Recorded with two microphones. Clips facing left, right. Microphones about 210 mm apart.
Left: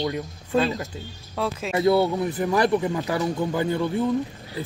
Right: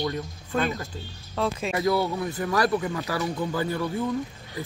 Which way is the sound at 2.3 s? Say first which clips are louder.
Left 3 dB; 15° left (ahead or behind).